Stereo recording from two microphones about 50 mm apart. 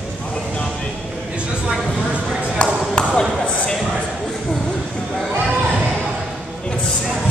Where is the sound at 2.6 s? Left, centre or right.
Centre.